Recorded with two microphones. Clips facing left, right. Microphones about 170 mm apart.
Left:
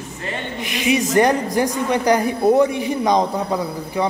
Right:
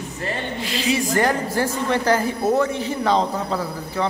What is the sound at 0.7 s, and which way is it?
A woman's voice, 20° left (ahead or behind).